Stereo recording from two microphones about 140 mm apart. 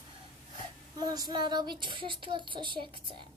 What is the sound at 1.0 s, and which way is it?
Child singing, 25° right (ahead or behind).